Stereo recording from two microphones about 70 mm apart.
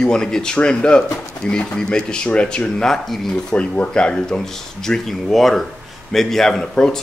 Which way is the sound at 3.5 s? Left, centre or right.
Centre.